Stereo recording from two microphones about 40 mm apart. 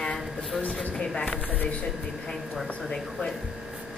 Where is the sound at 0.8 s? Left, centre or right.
Left.